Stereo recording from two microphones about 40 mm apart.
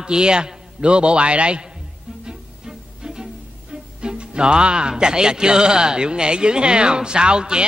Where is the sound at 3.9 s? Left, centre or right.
Right.